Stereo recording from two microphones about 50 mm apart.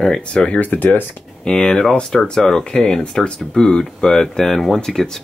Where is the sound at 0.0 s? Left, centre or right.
Centre.